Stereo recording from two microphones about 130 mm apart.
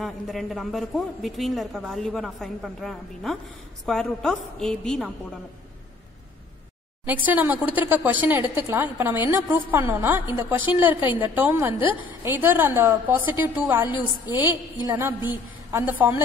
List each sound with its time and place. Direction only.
0.0 s a woman's voice: centre (ahead or behind)
7.1 s speech: 15° right (ahead or behind)
14.3 s a woman's voice: 30° left (ahead or behind)
15.0 s speech: 15° right (ahead or behind)